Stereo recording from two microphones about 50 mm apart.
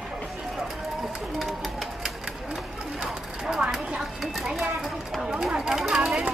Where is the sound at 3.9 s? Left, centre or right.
Centre.